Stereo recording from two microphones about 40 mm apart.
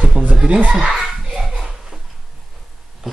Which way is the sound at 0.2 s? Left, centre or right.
Right.